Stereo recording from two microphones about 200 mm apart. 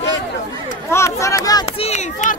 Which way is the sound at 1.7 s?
35° left (ahead or behind).